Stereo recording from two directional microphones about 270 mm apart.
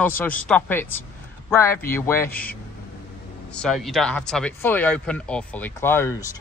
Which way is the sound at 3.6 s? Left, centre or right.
Centre.